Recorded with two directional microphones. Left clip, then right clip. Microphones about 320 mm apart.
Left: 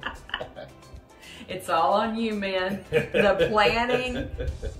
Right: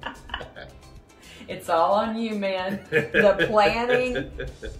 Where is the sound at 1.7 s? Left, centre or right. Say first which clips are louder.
Right 2 dB; centre.